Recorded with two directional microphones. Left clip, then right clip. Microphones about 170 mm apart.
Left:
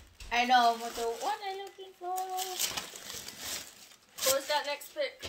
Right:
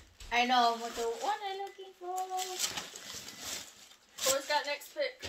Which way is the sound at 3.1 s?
40° left (ahead or behind).